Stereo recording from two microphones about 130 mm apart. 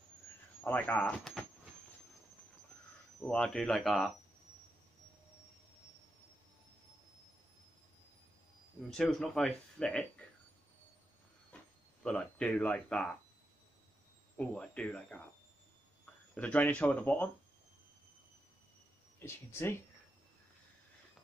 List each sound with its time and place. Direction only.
0.7 s speech: 10° left (ahead or behind)
3.2 s speech: 5° left (ahead or behind)
8.9 s speech: centre (ahead or behind)
12.0 s speech: 5° left (ahead or behind)
14.3 s speech: 10° left (ahead or behind)
16.3 s speech: 10° left (ahead or behind)
19.1 s speech: 15° left (ahead or behind)